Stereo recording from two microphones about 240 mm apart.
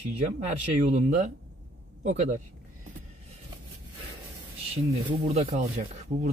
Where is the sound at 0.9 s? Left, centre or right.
Right.